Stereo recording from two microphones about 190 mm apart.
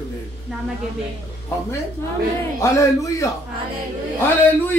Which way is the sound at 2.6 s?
15° left (ahead or behind).